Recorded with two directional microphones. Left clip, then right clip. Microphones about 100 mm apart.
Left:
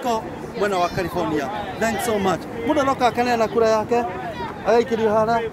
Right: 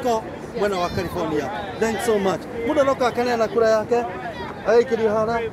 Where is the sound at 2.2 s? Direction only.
40° left (ahead or behind).